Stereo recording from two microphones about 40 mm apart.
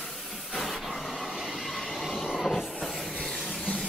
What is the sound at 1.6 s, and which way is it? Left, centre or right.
Train, centre.